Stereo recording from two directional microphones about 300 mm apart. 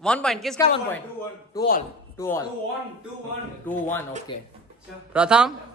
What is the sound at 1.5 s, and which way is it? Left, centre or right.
Speech, left.